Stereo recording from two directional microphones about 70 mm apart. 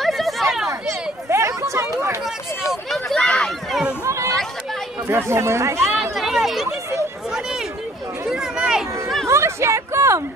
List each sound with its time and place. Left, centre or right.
0.0 s a sound: centre
1.3 s chatter: right
2.7 s a sound: centre
3.3 s run: centre
4.0 s chatter: right
5.0 s speech: right
5.9 s chatter: centre
8.3 s children playing: centre
9.3 s a sound: right